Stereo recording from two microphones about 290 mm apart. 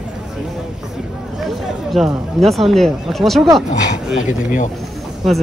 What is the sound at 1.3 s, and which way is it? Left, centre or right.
Speech, centre.